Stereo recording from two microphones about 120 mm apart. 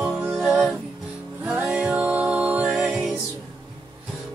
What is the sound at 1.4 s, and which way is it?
Music, 10° right (ahead or behind).